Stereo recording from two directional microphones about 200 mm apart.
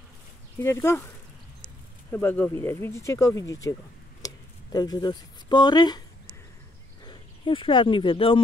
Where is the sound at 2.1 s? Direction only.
10° left (ahead or behind).